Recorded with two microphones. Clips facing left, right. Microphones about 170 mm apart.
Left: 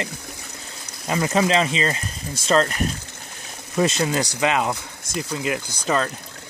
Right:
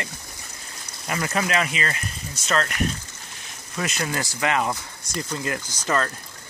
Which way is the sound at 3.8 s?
25° left (ahead or behind).